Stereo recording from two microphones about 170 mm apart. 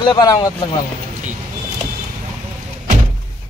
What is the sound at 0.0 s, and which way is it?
Speech, 25° left (ahead or behind).